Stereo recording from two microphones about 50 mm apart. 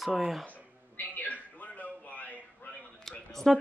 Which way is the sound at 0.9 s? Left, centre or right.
Left.